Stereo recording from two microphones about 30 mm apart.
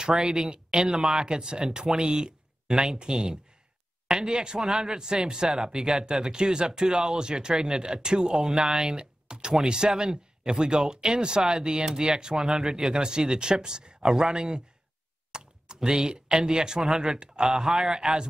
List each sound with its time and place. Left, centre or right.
0.1 s speech: centre
4.6 s speech: centre
8.7 s a sound: right
9.5 s speech: right
17.6 s a man's voice: centre